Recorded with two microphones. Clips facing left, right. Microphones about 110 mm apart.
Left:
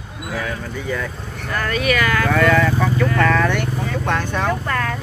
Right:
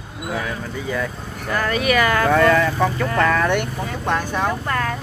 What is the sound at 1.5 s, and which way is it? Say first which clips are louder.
Speech: right 1 dB; 20° right (ahead or behind).